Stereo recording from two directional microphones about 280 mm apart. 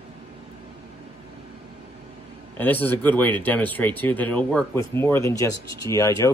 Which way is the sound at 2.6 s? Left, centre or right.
Centre.